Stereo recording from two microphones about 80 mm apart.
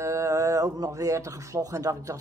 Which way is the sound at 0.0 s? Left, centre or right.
Right.